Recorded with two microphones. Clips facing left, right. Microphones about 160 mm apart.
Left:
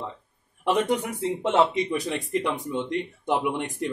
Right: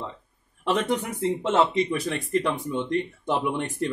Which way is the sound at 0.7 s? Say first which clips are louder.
Left 1 dB; 15° left (ahead or behind).